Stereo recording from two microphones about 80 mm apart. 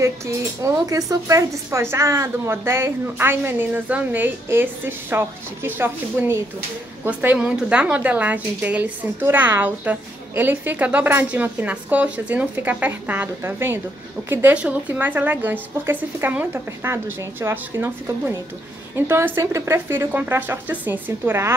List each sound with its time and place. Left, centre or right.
0.8 s a woman's voice: right
7.3 s a woman's voice: centre; by 13.7 s right
14.5 s a woman's voice: centre; by 20.1 s right
20.1 s a woman's voice: right